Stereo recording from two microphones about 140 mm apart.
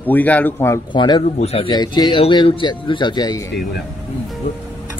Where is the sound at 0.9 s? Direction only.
35° left (ahead or behind).